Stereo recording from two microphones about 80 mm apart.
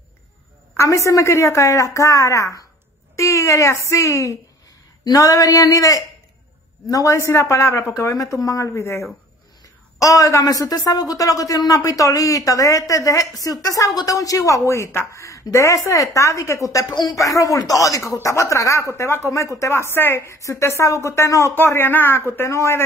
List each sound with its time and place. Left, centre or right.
0.7 s a woman's voice: left